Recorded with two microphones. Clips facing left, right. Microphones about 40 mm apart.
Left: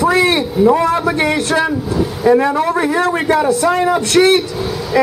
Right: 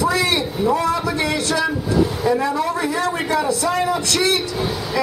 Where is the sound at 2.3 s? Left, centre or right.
Left.